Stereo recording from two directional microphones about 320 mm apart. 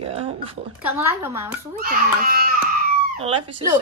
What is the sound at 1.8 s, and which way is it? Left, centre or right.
A child's voice, right.